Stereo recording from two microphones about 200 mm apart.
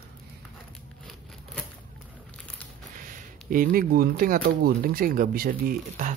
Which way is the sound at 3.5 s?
45° right (ahead or behind).